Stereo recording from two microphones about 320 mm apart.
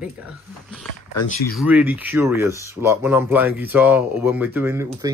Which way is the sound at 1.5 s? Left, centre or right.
Centre.